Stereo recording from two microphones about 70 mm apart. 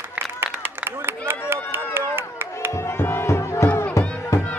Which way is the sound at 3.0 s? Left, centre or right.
Left.